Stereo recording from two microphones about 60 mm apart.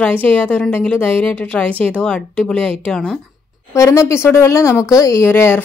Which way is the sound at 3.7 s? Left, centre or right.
Left.